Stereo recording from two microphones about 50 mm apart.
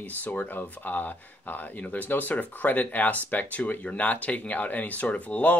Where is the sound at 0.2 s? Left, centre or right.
Left.